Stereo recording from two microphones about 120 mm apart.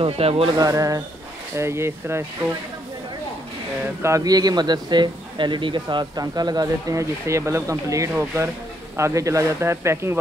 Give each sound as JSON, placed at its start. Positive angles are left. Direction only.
{"t": 0.0, "sound": "speech", "side_deg": -50}
{"t": 0.6, "sound": "speech", "side_deg": -30}
{"t": 4.0, "sound": "a man's voice", "side_deg": -30}